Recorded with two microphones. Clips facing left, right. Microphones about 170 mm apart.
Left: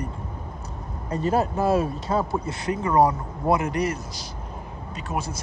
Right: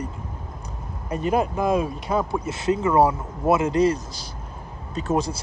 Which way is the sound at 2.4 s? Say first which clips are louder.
Right 4 dB; 25° right (ahead or behind).